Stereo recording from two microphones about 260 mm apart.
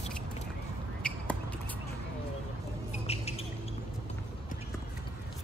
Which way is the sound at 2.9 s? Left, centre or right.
Left.